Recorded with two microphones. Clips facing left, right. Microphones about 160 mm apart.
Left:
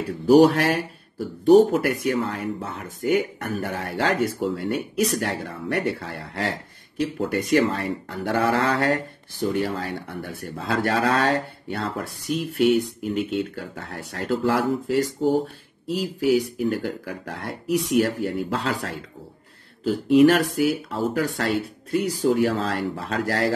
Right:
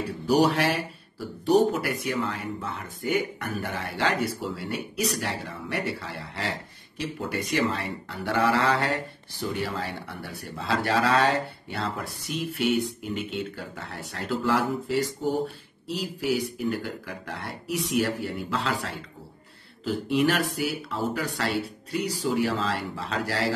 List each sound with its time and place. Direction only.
0.3 s speech: 45° left (ahead or behind)
13.0 s speech: centre (ahead or behind)
13.4 s speech: 45° left (ahead or behind)
16.6 s speech: 45° left (ahead or behind)